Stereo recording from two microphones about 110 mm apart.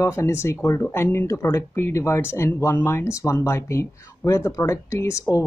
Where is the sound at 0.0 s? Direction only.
25° left (ahead or behind).